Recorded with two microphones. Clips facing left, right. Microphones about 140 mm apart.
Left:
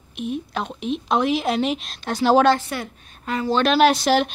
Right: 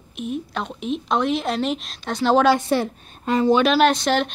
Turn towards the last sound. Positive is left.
turn(degrees=5)  # may be behind; listen again after turning